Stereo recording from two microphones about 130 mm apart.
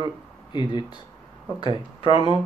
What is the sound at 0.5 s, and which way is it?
Speech, 35° left (ahead or behind).